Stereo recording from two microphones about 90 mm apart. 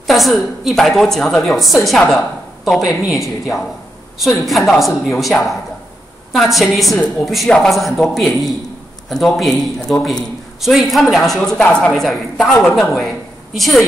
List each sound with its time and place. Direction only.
0.0 s a woman's voice: centre (ahead or behind)
11.6 s a woman's voice: 15° left (ahead or behind)
11.9 s a woman's voice: centre (ahead or behind)